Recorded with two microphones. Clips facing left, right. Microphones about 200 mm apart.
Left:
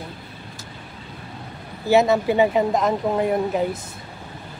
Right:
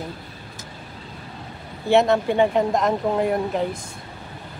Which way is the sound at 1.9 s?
5° left (ahead or behind).